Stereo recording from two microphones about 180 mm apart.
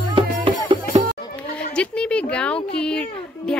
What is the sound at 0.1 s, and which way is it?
Music, 30° right (ahead or behind).